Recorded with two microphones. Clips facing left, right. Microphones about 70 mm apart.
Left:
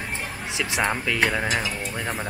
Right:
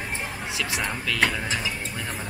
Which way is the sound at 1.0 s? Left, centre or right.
Centre.